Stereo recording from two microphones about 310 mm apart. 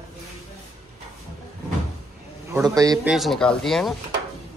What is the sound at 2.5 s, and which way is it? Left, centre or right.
A woman's voice, centre.